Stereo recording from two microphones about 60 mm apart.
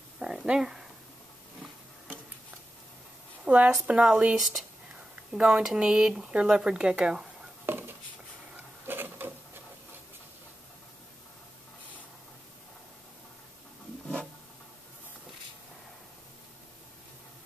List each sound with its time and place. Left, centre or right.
0.2 s speech: centre
3.4 s a woman's voice: right
4.4 s speech: centre
7.6 s a sound: right
8.8 s printer: right